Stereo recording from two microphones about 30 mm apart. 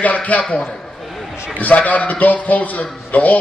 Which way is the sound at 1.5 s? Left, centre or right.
Left.